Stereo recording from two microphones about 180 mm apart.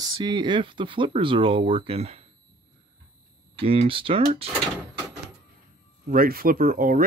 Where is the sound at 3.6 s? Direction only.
30° right (ahead or behind).